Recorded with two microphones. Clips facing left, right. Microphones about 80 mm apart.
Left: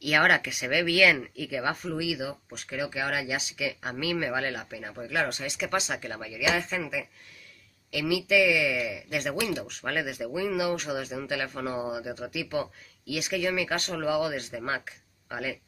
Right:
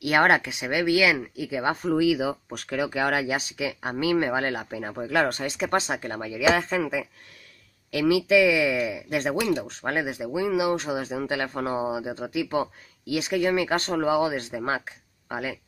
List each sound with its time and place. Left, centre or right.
0.0 s speech: right
1.8 s speech: right